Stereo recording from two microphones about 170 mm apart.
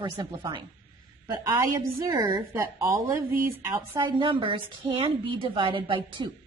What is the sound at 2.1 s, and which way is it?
A woman's voice, 15° right (ahead or behind).